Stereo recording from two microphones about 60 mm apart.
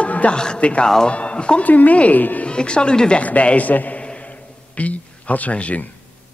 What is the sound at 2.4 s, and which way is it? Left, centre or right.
Speech, centre.